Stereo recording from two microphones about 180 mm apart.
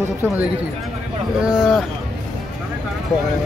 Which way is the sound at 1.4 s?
5° right (ahead or behind).